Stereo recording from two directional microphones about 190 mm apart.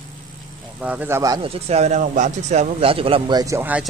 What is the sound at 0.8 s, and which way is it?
Speech, 5° right (ahead or behind).